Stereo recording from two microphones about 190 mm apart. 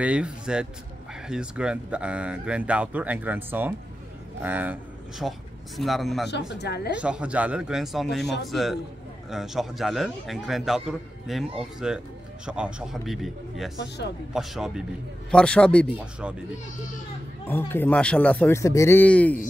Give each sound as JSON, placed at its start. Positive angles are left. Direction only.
{"t": 0.0, "sound": "a man's voice", "side_deg": -5}
{"t": 6.5, "sound": "a woman's voice", "side_deg": 60}
{"t": 7.0, "sound": "a man's voice", "side_deg": -5}
{"t": 17.5, "sound": "speech", "side_deg": 10}